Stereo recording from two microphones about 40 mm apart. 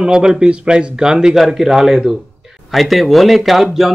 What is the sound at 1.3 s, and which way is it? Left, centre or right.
Speech, centre.